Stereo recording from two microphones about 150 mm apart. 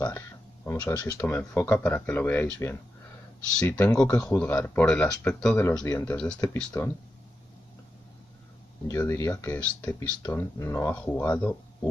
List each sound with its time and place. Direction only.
0.7 s speech: 20° left (ahead or behind)
1.0 s speech: 10° left (ahead or behind)
5.6 s speech: 20° left (ahead or behind)
6.4 s speech: 20° left (ahead or behind)
8.8 s speech: 20° left (ahead or behind)